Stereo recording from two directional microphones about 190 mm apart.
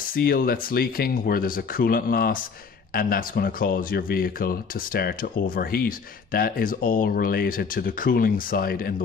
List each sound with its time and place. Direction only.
0.1 s speech: 50° left (ahead or behind)